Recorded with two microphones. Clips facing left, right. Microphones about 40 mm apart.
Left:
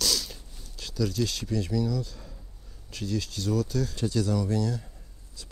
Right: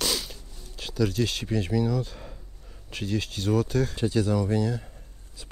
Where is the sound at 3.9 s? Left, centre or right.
Right.